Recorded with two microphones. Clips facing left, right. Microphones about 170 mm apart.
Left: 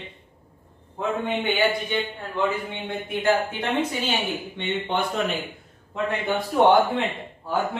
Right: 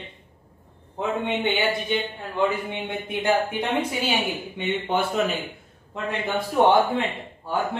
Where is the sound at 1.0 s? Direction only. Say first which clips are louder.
Even; 25° right (ahead or behind).